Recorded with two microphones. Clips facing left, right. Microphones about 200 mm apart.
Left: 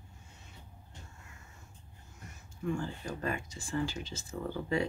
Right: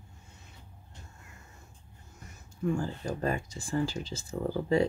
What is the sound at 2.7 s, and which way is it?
Speech, 35° right (ahead or behind).